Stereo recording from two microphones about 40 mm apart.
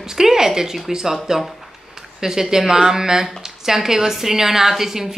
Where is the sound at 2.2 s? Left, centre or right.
Centre.